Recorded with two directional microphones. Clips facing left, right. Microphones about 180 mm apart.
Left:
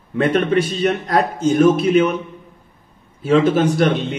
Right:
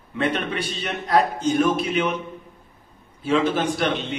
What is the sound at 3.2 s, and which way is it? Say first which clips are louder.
Speech: left 6 dB; 45° left (ahead or behind).